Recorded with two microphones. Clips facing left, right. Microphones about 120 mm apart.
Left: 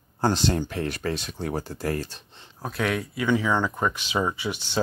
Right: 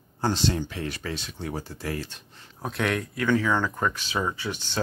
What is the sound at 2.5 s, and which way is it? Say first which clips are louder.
Speech: even; centre (ahead or behind).